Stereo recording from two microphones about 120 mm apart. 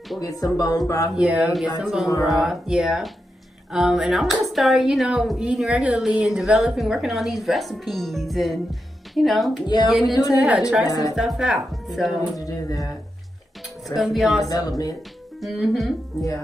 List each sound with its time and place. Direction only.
0.2 s speech: 30° left (ahead or behind)
1.1 s speech: 5° right (ahead or behind)
10.1 s speech: 30° left (ahead or behind)
10.4 s speech: 5° right (ahead or behind)
10.9 s speech: 30° left (ahead or behind)
11.1 s speech: centre (ahead or behind)
12.4 s speech: 30° left (ahead or behind)
13.8 s speech: centre (ahead or behind)
14.5 s speech: 30° left (ahead or behind)
15.4 s speech: centre (ahead or behind)